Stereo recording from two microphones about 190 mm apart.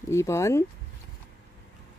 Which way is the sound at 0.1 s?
15° left (ahead or behind).